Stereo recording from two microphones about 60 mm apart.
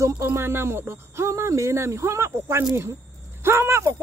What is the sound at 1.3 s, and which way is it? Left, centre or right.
A woman's voice, right.